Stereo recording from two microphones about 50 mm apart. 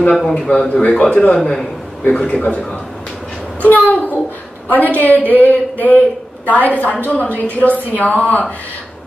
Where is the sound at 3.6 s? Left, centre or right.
Left.